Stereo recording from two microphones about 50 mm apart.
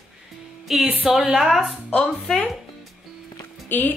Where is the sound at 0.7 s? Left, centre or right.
Centre.